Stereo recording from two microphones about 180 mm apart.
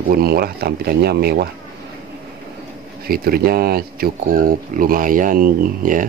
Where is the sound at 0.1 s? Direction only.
60° right (ahead or behind).